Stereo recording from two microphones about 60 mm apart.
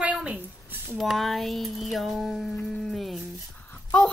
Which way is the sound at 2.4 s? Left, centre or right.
Centre.